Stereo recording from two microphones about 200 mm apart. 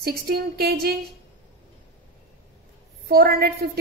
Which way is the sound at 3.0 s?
50° right (ahead or behind).